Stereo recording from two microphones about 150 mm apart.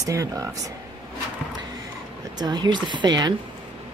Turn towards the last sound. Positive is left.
turn(degrees=-30)  # may be behind; listen again after turning